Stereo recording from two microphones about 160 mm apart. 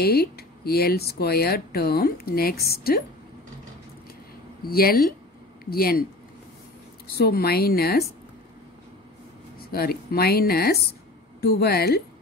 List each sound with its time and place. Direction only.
0.0 s speech: 80° left
4.6 s speech: 70° left (ahead or behind)
7.2 s speech: 75° left (ahead or behind)
9.6 s a woman's voice: 70° left (ahead or behind)